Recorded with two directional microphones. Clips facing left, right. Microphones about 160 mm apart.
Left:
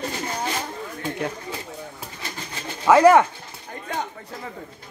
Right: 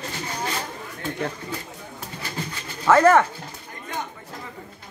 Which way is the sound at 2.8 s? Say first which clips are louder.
Left 2 dB; 10° left (ahead or behind).